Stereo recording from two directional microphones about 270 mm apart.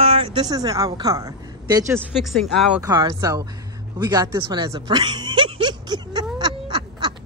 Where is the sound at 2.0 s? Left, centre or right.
Centre.